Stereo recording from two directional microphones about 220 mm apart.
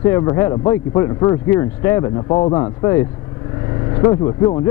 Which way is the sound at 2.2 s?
25° left (ahead or behind).